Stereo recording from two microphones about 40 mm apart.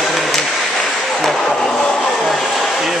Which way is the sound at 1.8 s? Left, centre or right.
Centre.